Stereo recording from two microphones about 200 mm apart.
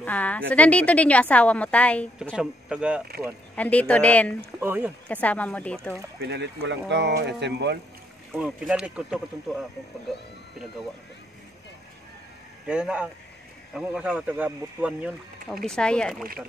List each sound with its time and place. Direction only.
0.0 s a woman's voice: 5° left (ahead or behind)
2.2 s speech: 5° right (ahead or behind)
3.5 s a woman's voice: 5° left (ahead or behind)
4.6 s speech: 10° right (ahead or behind)
5.0 s a woman's voice: 5° left (ahead or behind)
6.2 s speech: 55° right (ahead or behind)
8.4 s speech: 5° right (ahead or behind)
12.6 s speech: 5° right (ahead or behind)